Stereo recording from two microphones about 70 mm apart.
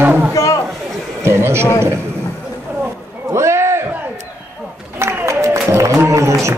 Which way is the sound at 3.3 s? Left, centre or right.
Right.